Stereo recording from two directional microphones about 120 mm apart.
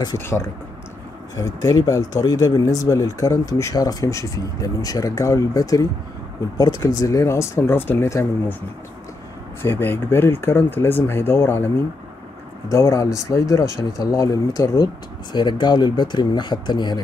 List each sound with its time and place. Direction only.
1.3 s speech: 30° left (ahead or behind)
7.0 s speech: 25° left (ahead or behind)
9.6 s speech: 20° left (ahead or behind); by 17.0 s 40° left (ahead or behind)